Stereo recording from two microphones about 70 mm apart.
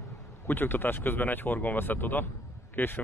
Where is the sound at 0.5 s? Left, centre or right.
Left.